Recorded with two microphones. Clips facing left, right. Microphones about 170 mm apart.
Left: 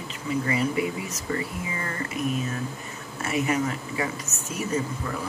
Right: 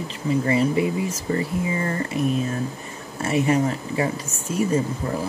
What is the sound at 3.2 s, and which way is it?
Speech, 30° right (ahead or behind).